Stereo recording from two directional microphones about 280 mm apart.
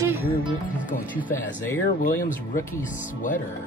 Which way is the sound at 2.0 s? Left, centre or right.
Left.